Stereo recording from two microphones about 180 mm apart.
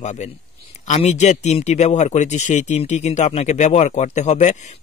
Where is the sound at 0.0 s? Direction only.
40° left (ahead or behind).